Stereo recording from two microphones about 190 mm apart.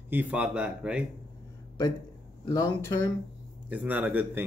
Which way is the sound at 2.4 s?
20° left (ahead or behind).